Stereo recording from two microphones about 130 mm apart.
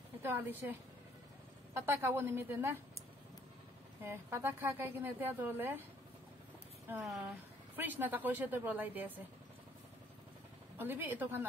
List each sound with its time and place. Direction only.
0.2 s speech: 15° right (ahead or behind)
4.0 s speech: 20° right (ahead or behind)
7.0 s speech: centre (ahead or behind)
7.2 s speech: 15° right (ahead or behind)
10.8 s speech: 15° right (ahead or behind)